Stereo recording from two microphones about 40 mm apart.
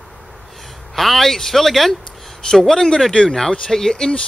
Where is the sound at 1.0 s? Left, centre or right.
Centre.